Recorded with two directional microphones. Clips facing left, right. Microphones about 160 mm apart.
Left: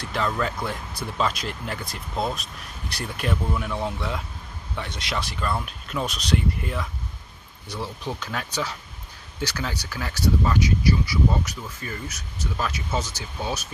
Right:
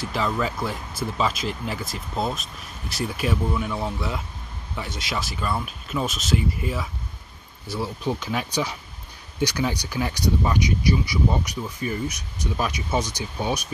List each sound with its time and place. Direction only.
0.0 s speech: 5° right (ahead or behind)